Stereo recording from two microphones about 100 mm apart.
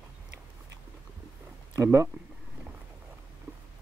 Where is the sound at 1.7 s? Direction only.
35° right (ahead or behind).